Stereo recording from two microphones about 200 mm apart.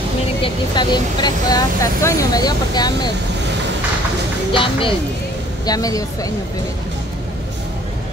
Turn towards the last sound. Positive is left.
turn(degrees=15)  # may be behind; listen again after turning